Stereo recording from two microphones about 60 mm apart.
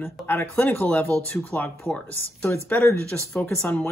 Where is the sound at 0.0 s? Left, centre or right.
Left.